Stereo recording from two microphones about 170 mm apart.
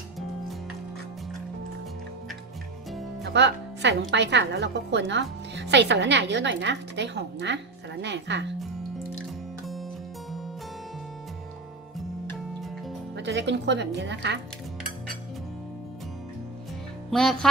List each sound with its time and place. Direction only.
2.9 s music: centre (ahead or behind)
3.3 s a woman's voice: 90° right
13.1 s a woman's voice: 90° right
17.1 s music: 5° left (ahead or behind)